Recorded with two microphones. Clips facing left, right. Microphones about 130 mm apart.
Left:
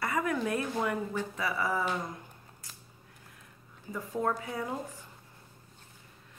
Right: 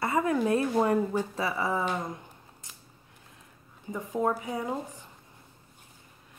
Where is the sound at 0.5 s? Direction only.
30° right (ahead or behind).